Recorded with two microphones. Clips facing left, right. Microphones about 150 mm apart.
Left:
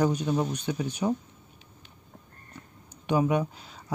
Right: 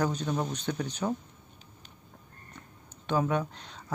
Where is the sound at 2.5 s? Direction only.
10° left (ahead or behind).